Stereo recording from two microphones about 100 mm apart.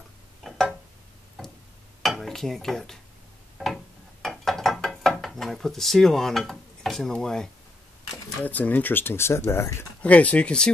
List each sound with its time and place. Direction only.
0.4 s a sound: centre (ahead or behind)
1.4 s tick-tock: centre (ahead or behind)
2.0 s dishes: 5° left (ahead or behind)
3.5 s mechanisms: centre (ahead or behind)
8.4 s speech: 15° left (ahead or behind)
10.0 s speech: 15° left (ahead or behind)